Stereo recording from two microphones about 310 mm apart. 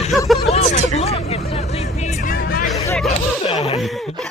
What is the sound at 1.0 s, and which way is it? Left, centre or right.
Music, centre.